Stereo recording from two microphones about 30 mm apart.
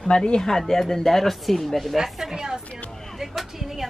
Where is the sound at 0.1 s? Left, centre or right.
Left.